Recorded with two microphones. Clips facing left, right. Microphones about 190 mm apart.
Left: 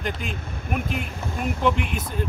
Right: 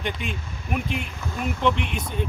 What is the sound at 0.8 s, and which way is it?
Speech, 45° left (ahead or behind).